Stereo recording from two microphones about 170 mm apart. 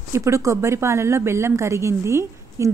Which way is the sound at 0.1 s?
15° right (ahead or behind).